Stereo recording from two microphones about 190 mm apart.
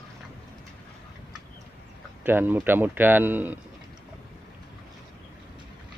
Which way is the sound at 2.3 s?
10° right (ahead or behind).